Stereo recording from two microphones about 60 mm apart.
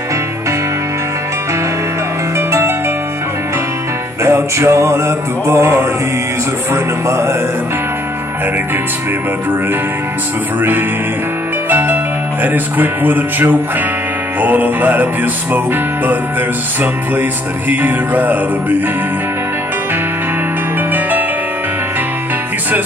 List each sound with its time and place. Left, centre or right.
2.3 s music: right
4.2 s music: right
11.7 s speech: right
14.4 s music: right